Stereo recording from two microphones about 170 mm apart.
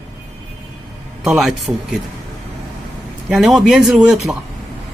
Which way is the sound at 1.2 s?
Centre (ahead or behind).